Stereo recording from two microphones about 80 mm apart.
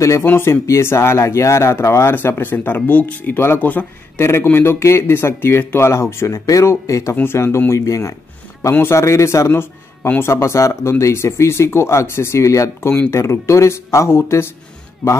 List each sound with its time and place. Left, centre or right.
0.2 s speech: left
9.5 s speech: left